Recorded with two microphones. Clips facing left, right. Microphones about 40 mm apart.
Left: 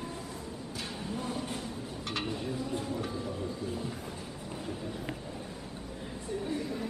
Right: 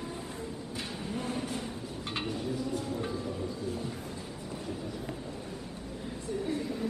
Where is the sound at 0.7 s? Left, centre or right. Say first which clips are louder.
Even; right.